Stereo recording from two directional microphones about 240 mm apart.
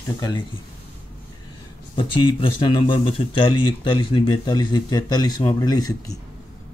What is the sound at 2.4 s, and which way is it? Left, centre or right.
Speech, left.